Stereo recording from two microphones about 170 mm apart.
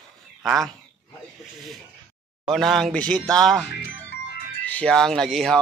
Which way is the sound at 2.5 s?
Centre (ahead or behind).